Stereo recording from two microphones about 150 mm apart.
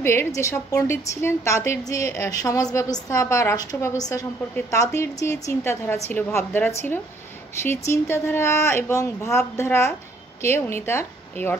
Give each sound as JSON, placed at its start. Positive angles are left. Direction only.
{"t": 0.0, "sound": "a woman's voice", "side_deg": 15}